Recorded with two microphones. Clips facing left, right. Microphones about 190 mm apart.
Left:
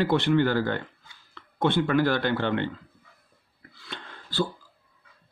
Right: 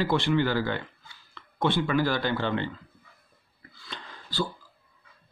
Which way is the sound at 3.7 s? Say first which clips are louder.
Left 2 dB; 65° left (ahead or behind).